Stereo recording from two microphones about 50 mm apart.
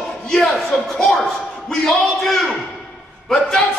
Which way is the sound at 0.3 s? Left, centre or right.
Centre.